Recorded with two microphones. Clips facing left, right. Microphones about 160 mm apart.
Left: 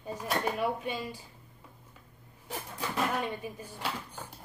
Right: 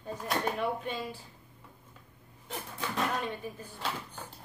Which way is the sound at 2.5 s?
10° left (ahead or behind).